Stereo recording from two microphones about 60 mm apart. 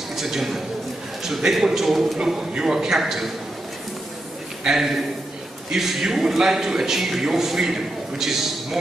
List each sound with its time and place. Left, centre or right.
0.1 s a man's voice: centre
4.6 s a man's voice: centre